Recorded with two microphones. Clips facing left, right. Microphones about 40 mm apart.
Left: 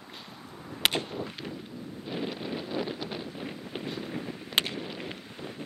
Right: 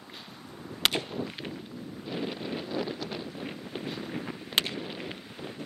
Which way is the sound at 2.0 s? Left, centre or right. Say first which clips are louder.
Even; centre.